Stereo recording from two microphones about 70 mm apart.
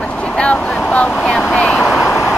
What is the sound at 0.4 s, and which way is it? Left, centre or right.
Speech, centre.